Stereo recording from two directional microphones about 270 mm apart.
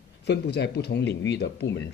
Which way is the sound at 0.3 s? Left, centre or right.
Left.